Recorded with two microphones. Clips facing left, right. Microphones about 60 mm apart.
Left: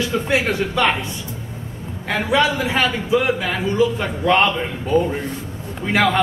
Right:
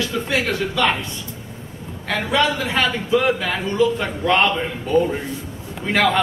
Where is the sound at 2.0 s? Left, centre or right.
Centre.